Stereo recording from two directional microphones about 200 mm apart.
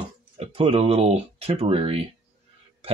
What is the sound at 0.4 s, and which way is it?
Speech, 30° right (ahead or behind).